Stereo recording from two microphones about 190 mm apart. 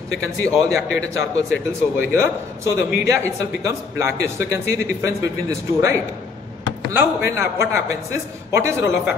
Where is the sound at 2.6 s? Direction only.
15° right (ahead or behind).